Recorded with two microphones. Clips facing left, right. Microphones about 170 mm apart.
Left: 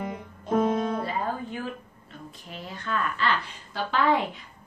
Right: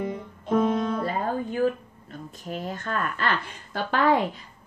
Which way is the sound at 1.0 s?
45° right (ahead or behind).